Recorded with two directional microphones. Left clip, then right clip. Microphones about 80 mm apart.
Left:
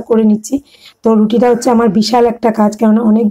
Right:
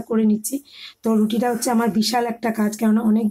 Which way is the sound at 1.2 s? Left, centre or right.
Left.